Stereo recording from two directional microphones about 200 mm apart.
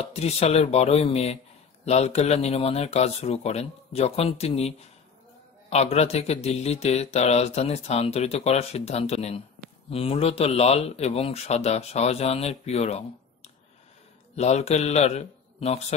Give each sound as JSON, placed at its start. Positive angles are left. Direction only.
{"t": 0.0, "sound": "speech", "side_deg": 30}